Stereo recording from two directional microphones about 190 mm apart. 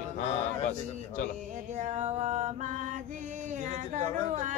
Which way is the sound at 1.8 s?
35° right (ahead or behind).